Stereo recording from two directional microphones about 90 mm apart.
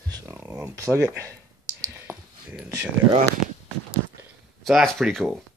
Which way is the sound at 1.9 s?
25° right (ahead or behind).